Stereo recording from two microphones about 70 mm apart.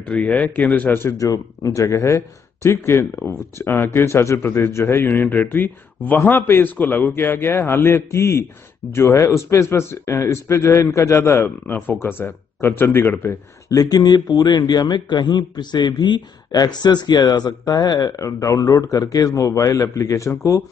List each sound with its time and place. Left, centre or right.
0.0 s speech: left
1.1 s speech: left
10.9 s speech: left
11.3 s speech: left
13.7 s speech: left